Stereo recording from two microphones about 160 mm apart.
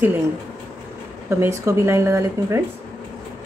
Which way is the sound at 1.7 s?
20° right (ahead or behind).